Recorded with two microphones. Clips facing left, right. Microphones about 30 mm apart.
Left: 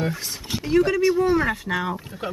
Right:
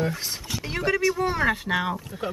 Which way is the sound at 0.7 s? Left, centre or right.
Centre.